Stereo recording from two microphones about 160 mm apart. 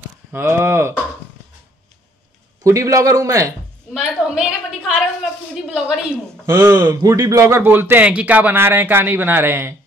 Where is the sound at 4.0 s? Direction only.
5° right (ahead or behind).